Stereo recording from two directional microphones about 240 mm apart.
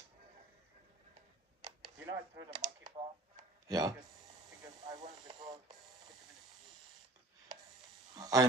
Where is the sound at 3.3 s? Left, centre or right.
Centre.